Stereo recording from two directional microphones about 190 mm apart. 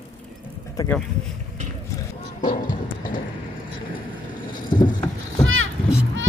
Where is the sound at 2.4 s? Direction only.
45° left (ahead or behind).